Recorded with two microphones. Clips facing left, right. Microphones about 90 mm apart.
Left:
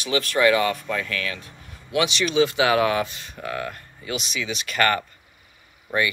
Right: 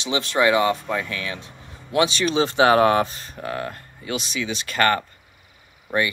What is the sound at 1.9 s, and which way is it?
Speech, 35° right (ahead or behind).